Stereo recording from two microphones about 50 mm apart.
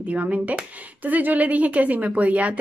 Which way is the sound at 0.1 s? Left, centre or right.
Right.